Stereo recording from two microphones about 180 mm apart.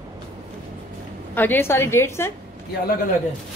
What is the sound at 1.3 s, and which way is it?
A woman's voice, 10° left (ahead or behind).